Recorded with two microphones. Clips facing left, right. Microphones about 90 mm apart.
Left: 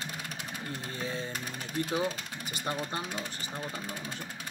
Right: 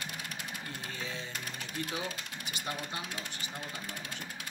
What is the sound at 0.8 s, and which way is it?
Speech, 35° left (ahead or behind).